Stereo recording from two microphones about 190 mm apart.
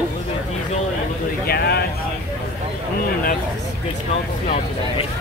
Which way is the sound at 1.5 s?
60° left (ahead or behind).